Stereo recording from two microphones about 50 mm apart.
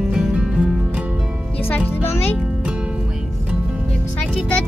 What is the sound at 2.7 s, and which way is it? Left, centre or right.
Music, centre.